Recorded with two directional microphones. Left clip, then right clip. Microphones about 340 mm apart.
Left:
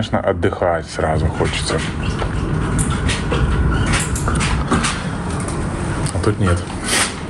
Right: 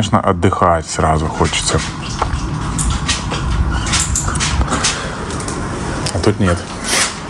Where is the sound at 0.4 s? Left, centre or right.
Right.